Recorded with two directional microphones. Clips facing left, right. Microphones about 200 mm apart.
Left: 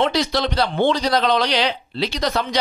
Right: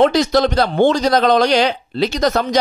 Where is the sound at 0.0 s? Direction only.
45° right (ahead or behind).